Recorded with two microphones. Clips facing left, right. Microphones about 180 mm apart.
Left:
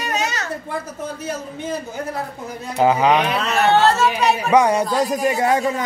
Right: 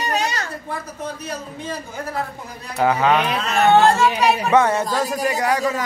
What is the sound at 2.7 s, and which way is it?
Speech, 20° left (ahead or behind).